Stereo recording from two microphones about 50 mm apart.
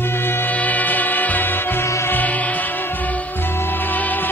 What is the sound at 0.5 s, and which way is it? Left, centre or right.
Music, left.